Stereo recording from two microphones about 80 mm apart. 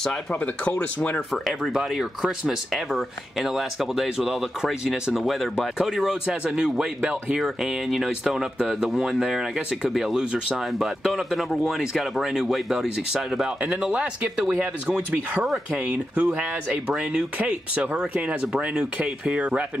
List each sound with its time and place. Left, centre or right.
0.3 s speech: centre
1.6 s speech: centre